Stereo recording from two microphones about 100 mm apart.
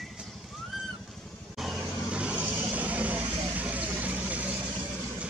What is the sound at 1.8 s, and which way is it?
Vehicle, 10° right (ahead or behind).